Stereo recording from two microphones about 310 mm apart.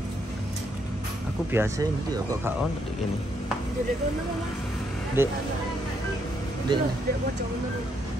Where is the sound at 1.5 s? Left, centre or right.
Centre.